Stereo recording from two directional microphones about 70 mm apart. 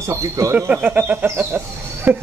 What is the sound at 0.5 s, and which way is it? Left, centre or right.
Speech, right.